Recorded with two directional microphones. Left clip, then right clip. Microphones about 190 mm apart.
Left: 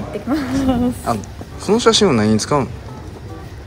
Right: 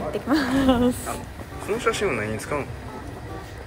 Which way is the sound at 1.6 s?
15° left (ahead or behind).